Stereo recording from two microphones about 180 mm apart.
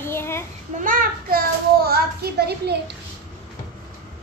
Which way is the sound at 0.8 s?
50° right (ahead or behind).